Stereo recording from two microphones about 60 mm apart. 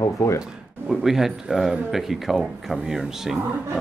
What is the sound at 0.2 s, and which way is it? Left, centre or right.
Speech, left.